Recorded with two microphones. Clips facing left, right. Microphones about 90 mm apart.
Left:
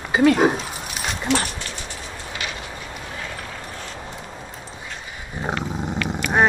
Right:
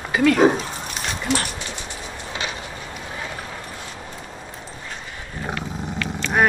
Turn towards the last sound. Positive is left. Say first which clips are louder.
# left 1 dB
turn(degrees=15)  # may be behind; listen again after turning